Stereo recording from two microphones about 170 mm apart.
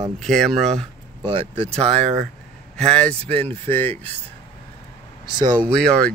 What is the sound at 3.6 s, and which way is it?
Speech, 10° left (ahead or behind).